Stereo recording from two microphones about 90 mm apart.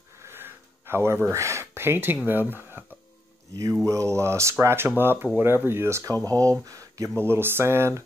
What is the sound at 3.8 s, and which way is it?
Speech, 35° right (ahead or behind).